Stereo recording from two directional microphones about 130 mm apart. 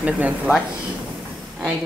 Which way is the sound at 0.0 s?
10° right (ahead or behind).